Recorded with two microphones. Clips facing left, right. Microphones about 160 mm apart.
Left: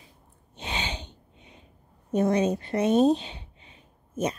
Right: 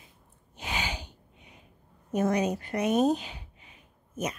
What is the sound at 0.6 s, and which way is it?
Sneeze, 25° left (ahead or behind).